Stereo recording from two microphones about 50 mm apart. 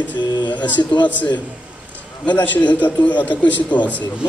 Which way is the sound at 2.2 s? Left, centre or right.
Left.